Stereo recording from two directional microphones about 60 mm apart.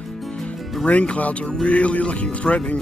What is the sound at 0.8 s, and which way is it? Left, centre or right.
Speech, left.